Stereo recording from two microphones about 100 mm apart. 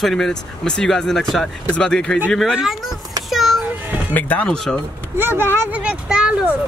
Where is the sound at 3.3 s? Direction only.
Centre (ahead or behind).